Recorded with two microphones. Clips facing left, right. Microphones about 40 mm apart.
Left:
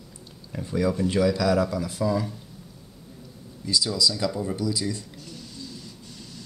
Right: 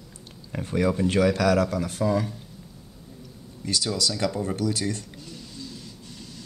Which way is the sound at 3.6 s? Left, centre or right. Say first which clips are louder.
Left 2 dB; right.